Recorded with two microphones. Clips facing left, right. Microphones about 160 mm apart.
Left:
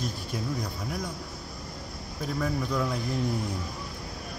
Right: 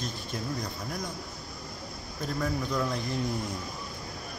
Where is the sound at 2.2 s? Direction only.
Centre (ahead or behind).